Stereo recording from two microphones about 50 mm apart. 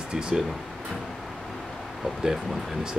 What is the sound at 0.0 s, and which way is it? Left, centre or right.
Speech, centre.